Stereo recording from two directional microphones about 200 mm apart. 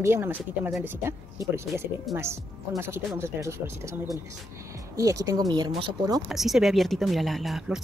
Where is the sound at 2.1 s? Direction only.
Centre (ahead or behind).